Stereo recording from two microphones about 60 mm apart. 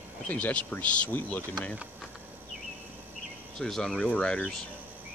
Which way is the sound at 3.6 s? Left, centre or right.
Centre.